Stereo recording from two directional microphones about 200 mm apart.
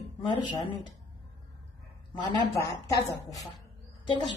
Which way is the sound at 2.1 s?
20° left (ahead or behind).